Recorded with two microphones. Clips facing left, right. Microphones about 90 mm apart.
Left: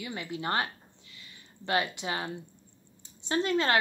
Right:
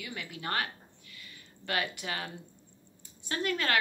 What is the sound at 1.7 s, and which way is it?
Speech, 25° left (ahead or behind).